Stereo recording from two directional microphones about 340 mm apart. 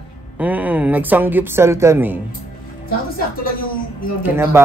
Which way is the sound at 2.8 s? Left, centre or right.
Left.